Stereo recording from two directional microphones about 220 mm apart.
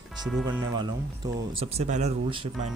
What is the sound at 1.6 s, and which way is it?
Speech, 30° right (ahead or behind).